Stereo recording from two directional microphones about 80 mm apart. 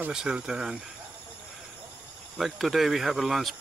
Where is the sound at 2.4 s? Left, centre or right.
Centre.